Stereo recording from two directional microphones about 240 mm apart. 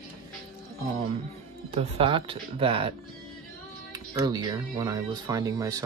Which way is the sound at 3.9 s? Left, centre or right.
Centre.